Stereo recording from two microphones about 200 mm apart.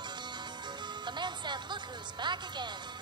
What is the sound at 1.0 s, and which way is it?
Speech, 20° right (ahead or behind).